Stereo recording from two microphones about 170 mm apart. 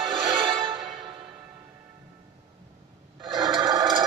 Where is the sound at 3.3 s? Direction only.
25° right (ahead or behind).